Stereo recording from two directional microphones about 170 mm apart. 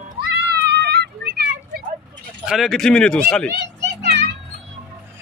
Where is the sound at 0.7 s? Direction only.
75° right (ahead or behind).